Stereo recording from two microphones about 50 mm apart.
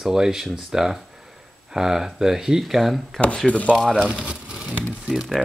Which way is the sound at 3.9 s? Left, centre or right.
Centre.